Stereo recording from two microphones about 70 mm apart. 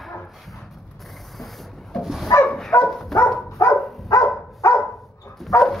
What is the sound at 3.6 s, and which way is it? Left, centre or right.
Dog, left.